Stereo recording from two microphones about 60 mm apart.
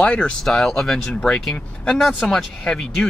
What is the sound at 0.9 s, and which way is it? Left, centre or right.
Speech, centre.